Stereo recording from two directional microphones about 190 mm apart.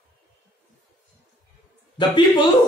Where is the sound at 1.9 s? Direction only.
25° left (ahead or behind).